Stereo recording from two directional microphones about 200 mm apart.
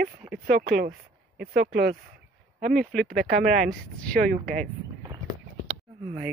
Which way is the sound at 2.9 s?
5° left (ahead or behind).